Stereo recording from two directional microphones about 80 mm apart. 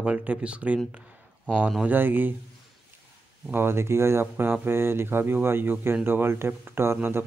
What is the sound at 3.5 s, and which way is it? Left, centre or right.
Speech, right.